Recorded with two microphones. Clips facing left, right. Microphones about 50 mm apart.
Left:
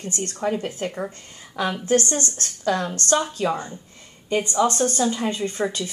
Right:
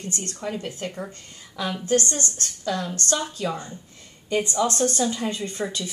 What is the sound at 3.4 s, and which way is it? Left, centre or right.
Speech, left.